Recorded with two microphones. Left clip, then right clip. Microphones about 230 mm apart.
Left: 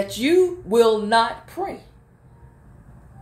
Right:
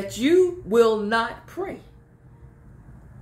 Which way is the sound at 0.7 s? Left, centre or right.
Centre.